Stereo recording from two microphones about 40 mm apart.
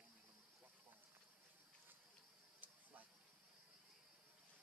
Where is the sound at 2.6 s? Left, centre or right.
Right.